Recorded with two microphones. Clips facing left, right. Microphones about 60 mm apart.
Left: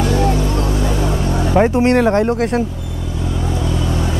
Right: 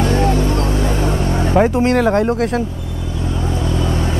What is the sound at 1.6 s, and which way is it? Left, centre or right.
Speech, centre.